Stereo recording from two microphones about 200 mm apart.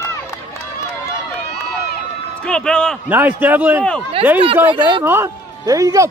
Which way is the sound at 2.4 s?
5° left (ahead or behind).